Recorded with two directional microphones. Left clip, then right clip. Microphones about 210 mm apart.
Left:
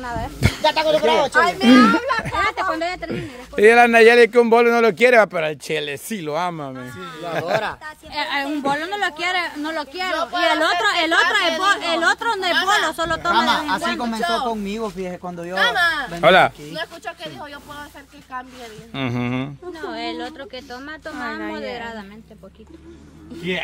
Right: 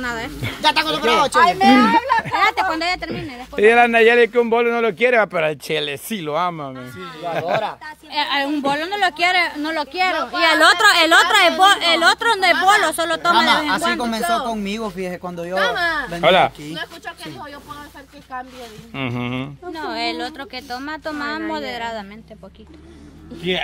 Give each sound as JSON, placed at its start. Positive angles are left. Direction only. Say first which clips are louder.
{"t": 0.0, "sound": "speech", "louder": "even", "side_deg": -50}
{"t": 2.4, "sound": "speech", "louder": "right 4 dB", "side_deg": -50}
{"t": 3.1, "sound": "speech", "louder": "right 1 dB", "side_deg": 20}
{"t": 5.3, "sound": "speech", "louder": "right 2 dB", "side_deg": 0}
{"t": 8.1, "sound": "a woman's voice", "louder": "right 3 dB", "side_deg": -10}
{"t": 14.2, "sound": "speech", "louder": "even", "side_deg": 50}
{"t": 14.5, "sound": "speech", "louder": "right 1 dB", "side_deg": -25}
{"t": 15.7, "sound": "speech", "louder": "left 1 dB", "side_deg": 45}
{"t": 16.2, "sound": "speech", "louder": "left 1 dB", "side_deg": 25}
{"t": 18.9, "sound": "speech", "louder": "even", "side_deg": 20}
{"t": 19.7, "sound": "speech", "louder": "right 6 dB", "side_deg": -50}